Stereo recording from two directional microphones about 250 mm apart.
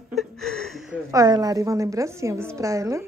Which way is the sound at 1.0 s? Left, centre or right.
Centre.